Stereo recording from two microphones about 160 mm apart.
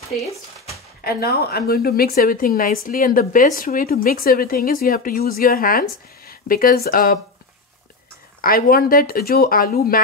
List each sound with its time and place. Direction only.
1.0 s a woman's voice: 80° left; by 7.2 s 60° left (ahead or behind)
8.4 s a woman's voice: 65° left (ahead or behind)